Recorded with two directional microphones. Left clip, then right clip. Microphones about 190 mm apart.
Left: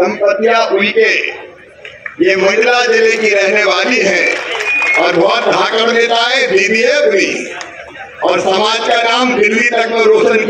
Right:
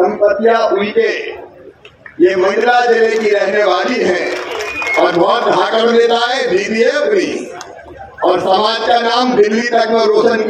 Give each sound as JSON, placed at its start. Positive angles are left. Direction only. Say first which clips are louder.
{"t": 0.0, "sound": "a man's voice", "louder": "even", "side_deg": -25}
{"t": 2.2, "sound": "a man's voice", "louder": "left 1 dB", "side_deg": -25}